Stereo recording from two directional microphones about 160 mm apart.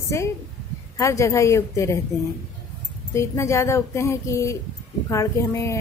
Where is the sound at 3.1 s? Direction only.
15° left (ahead or behind).